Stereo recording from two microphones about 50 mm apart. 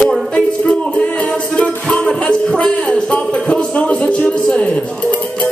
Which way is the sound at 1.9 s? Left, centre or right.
Left.